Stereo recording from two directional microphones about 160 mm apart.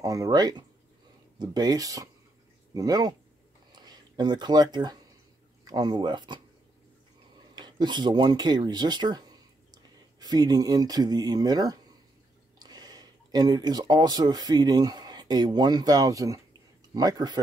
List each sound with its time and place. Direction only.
0.0 s speech: 20° right (ahead or behind)
7.5 s speech: 25° right (ahead or behind)